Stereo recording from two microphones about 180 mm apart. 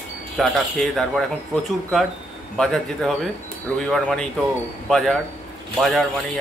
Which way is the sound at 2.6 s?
Centre (ahead or behind).